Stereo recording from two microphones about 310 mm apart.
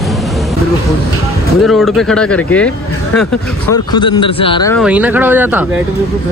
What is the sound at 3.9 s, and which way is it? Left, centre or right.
Speech, centre.